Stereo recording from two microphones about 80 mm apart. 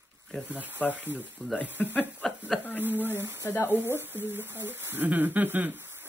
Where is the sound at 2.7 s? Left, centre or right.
Right.